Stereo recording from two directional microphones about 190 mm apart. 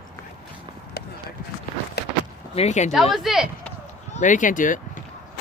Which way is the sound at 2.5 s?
35° left (ahead or behind).